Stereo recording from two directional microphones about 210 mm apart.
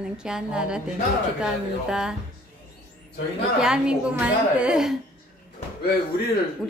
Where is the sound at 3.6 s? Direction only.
5° right (ahead or behind).